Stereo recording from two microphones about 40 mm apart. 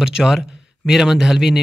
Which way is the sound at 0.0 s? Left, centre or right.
Centre.